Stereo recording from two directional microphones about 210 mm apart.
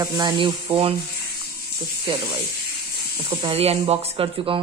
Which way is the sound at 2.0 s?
25° right (ahead or behind).